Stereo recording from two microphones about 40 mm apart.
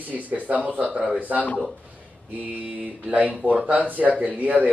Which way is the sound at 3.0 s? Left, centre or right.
Right.